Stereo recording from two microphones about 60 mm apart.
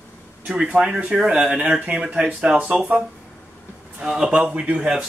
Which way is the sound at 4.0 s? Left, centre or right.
Centre.